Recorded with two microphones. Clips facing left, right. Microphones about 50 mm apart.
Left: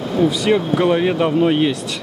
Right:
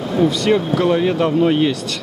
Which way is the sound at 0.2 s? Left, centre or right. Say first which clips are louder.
Even; centre.